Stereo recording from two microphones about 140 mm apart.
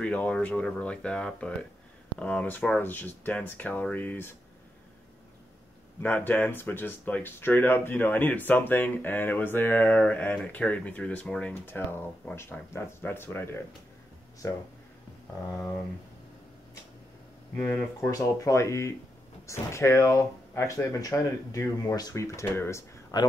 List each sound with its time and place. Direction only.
0.0 s speech: 10° left (ahead or behind)
5.9 s speech: 15° left (ahead or behind)
17.6 s speech: 15° left (ahead or behind)